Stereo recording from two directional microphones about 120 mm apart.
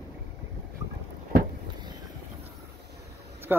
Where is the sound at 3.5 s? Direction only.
15° right (ahead or behind).